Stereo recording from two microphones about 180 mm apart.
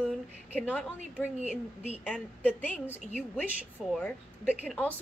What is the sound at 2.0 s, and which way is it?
A woman's voice, centre (ahead or behind).